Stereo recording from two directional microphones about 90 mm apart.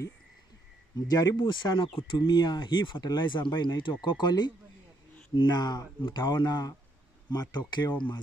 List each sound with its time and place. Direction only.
1.0 s speech: 50° left (ahead or behind)